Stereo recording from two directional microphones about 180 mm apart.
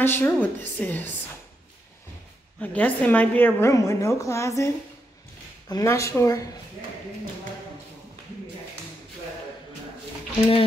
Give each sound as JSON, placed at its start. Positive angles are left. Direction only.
{"t": 0.0, "sound": "a woman's voice", "side_deg": 10}
{"t": 2.6, "sound": "a woman's voice", "side_deg": 10}
{"t": 5.7, "sound": "a woman's voice", "side_deg": 20}